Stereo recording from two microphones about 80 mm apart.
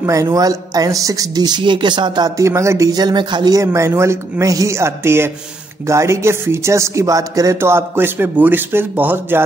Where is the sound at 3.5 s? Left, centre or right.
Right.